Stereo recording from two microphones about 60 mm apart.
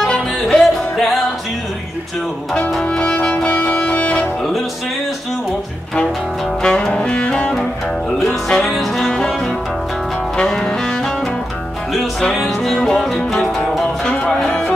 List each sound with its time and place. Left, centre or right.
0.0 s music: centre
0.6 s music: centre
2.8 s music: centre
6.6 s music: centre
10.3 s double bass: centre
12.4 s music: centre